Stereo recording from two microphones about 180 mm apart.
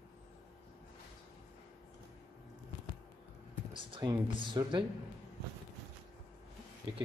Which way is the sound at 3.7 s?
25° right (ahead or behind).